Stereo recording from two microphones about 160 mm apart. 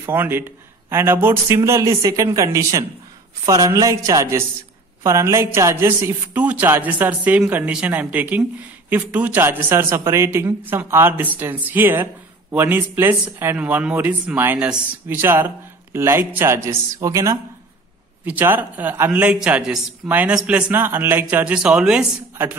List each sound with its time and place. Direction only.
0.0 s a man's voice: 15° right (ahead or behind)